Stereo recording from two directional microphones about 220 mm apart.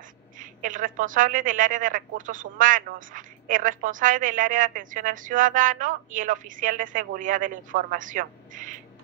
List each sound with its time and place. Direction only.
0.4 s a woman's voice: 35° right (ahead or behind)